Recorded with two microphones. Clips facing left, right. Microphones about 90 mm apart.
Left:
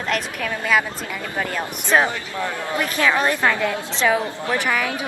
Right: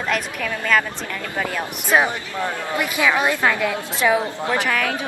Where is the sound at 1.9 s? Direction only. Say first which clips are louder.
Even; 15° right (ahead or behind).